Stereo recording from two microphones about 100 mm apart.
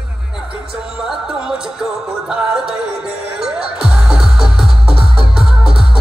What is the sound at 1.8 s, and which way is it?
Music, 5° right (ahead or behind).